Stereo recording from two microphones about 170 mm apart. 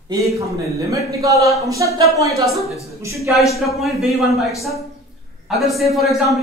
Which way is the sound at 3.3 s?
10° right (ahead or behind).